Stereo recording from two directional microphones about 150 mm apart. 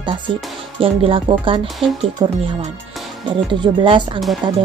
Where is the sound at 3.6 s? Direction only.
35° right (ahead or behind).